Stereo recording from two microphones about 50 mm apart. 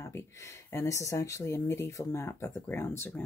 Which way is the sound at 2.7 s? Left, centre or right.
Left.